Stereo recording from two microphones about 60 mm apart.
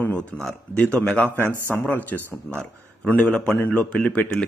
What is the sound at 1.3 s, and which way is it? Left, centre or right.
Speech, right.